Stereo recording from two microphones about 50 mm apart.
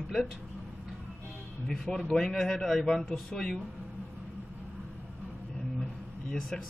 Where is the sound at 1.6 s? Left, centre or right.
Centre.